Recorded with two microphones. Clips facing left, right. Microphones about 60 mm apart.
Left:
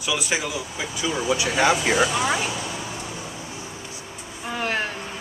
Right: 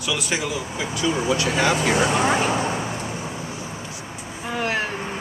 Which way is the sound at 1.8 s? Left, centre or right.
Right.